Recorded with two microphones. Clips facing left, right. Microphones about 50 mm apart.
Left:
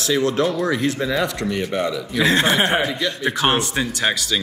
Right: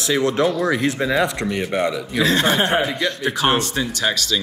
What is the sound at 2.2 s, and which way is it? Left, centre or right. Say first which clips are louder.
Speech: left 1 dB; left.